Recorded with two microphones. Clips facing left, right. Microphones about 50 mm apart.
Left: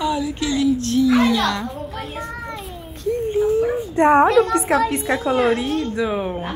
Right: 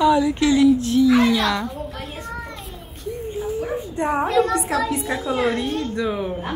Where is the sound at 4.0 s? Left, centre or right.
Left.